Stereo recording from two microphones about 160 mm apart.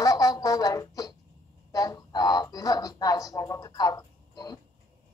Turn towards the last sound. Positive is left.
turn(degrees=25)  # may be behind; listen again after turning